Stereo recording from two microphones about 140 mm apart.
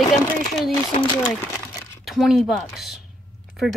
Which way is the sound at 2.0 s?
Centre (ahead or behind).